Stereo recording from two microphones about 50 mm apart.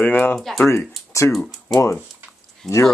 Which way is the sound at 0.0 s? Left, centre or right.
Left.